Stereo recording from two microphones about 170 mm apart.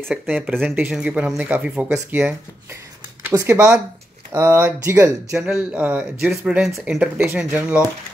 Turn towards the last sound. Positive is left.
turn(degrees=-10)  # may be behind; listen again after turning